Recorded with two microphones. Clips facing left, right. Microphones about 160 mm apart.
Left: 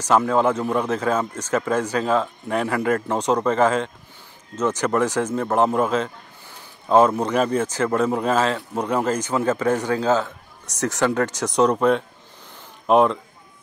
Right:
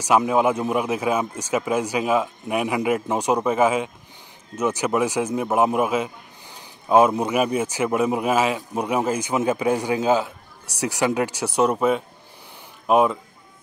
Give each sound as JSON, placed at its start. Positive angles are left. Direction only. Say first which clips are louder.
{"t": 0.0, "sound": "speech", "louder": "even", "side_deg": -10}